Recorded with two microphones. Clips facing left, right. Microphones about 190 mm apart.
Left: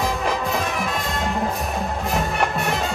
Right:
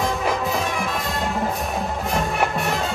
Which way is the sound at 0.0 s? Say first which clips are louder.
Right 1 dB; centre (ahead or behind).